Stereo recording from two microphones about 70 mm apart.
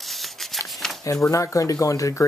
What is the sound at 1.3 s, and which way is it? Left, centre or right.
Speech, left.